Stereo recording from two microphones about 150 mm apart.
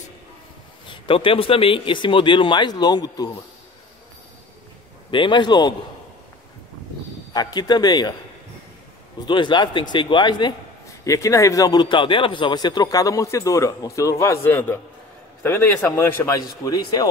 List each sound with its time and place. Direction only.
0.8 s speech: 35° left (ahead or behind)
5.1 s speech: 30° left (ahead or behind)
7.3 s speech: 25° left (ahead or behind)
9.2 s speech: 30° left (ahead or behind)
11.1 s speech: 20° left (ahead or behind)